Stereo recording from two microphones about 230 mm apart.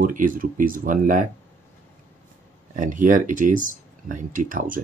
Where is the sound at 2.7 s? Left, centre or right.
Right.